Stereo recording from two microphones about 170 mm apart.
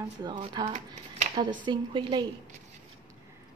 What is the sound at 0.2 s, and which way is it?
Speech, 25° right (ahead or behind).